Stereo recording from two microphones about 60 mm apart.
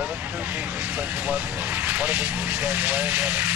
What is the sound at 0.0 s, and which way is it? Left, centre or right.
Speech, right.